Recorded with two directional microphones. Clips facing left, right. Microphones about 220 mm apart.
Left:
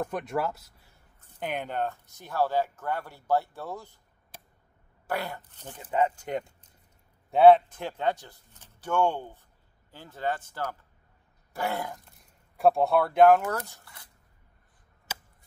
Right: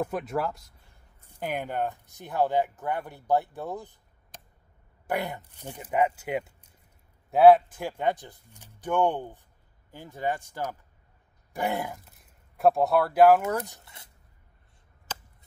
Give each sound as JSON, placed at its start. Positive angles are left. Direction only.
{"t": 0.0, "sound": "speech", "side_deg": -5}
{"t": 1.2, "sound": "speech", "side_deg": -10}
{"t": 4.3, "sound": "a sound", "side_deg": 10}
{"t": 5.0, "sound": "speech", "side_deg": -20}
{"t": 12.0, "sound": "speech", "side_deg": 0}
{"t": 13.5, "sound": "speech", "side_deg": -15}